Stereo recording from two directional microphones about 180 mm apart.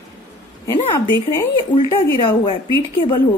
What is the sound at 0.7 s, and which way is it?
Speech, 15° left (ahead or behind).